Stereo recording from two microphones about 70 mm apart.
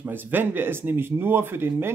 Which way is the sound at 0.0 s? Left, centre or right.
Right.